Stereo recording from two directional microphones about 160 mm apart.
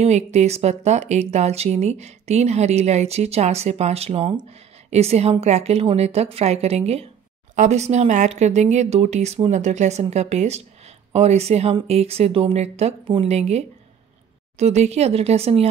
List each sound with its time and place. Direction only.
0.0 s speech: 45° right (ahead or behind)